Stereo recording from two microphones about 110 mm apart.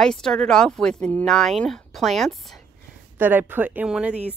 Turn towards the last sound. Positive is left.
turn(degrees=-10)  # may be behind; listen again after turning